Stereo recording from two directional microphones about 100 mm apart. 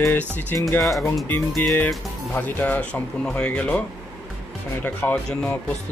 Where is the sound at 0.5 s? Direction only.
20° left (ahead or behind).